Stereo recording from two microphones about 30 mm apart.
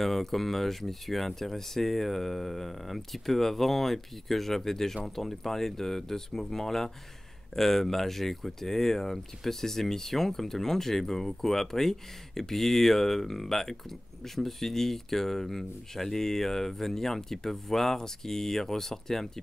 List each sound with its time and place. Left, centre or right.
0.0 s speech: centre